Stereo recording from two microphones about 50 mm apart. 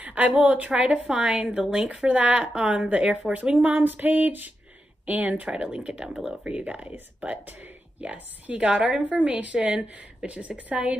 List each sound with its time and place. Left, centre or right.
0.0 s a sound: right
0.4 s female singing: right
0.8 s speech: right
3.6 s female singing: right
5.0 s speech: right
9.1 s speech: right